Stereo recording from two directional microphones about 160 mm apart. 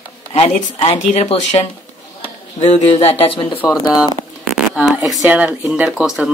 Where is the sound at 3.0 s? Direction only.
40° left (ahead or behind).